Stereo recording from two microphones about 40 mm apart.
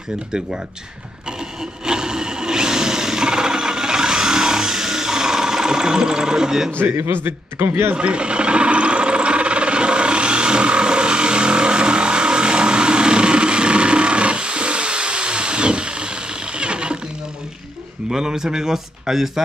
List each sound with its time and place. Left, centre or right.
1.9 s tools: centre
7.2 s a man's voice: right
7.9 s a sound: right
18.1 s a man's voice: centre